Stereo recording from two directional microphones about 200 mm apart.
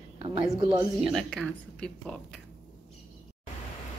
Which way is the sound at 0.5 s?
25° right (ahead or behind).